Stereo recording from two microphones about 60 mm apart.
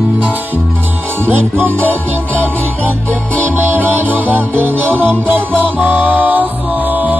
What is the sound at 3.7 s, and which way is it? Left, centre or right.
Music, right.